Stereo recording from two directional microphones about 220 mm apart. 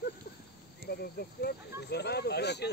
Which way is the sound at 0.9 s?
45° left (ahead or behind).